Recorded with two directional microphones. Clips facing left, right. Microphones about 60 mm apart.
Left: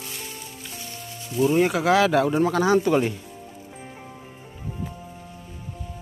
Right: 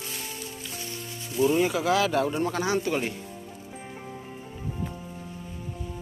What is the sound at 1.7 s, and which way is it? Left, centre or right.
Speech, left.